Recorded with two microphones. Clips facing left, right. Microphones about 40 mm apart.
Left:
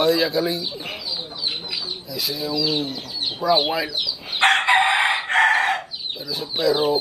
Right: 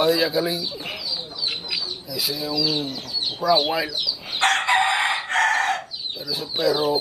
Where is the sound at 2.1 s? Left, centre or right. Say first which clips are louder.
Left 1 dB; centre.